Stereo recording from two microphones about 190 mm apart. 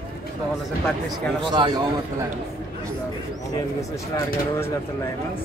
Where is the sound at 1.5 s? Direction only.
20° right (ahead or behind).